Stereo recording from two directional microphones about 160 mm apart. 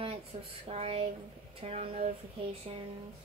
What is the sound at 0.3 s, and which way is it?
Speech, 45° right (ahead or behind).